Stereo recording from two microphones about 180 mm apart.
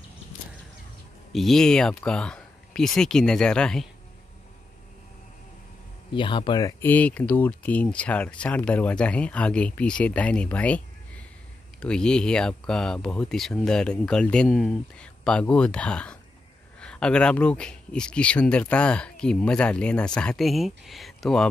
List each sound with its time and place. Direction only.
1.3 s speech: centre (ahead or behind)
6.1 s speech: 25° left (ahead or behind)
6.8 s speech: 10° left (ahead or behind)